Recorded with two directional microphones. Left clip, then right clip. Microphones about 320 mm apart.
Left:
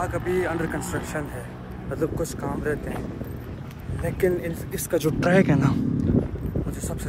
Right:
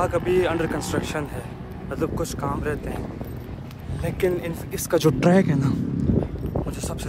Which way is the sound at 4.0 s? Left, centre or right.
Centre.